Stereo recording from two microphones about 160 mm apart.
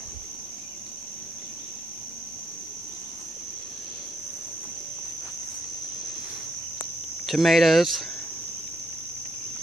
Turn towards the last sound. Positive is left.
turn(degrees=0)  # may be behind; listen again after turning